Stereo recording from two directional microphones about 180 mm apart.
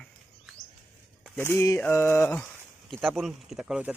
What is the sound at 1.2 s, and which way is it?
Speech, 10° left (ahead or behind).